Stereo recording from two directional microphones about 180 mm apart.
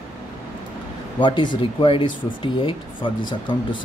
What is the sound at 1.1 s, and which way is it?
Speech, 25° left (ahead or behind).